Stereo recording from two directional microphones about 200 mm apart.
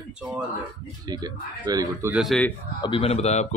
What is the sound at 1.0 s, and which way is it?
A man's voice, 20° right (ahead or behind).